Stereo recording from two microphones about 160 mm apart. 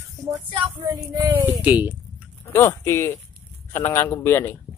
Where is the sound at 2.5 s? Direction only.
15° left (ahead or behind).